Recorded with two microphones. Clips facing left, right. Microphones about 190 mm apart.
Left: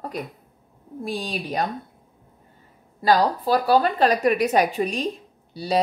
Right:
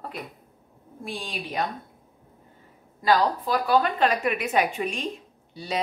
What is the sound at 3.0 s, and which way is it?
A woman's voice, 35° left (ahead or behind).